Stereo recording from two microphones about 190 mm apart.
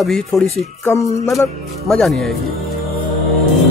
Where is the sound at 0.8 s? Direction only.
15° left (ahead or behind).